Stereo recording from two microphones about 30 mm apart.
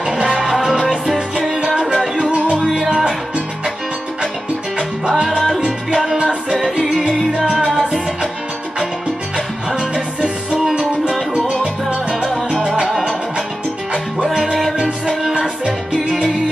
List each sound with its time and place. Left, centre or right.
0.0 s music: right
2.2 s music: right
2.7 s music: centre
5.0 s music: centre
6.8 s music: centre
7.5 s salsa music: centre
7.8 s music: right
10.7 s music: right
14.2 s music: centre
15.6 s salsa music: right